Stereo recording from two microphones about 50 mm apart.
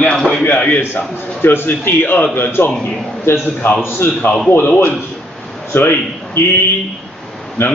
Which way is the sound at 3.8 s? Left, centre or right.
Left.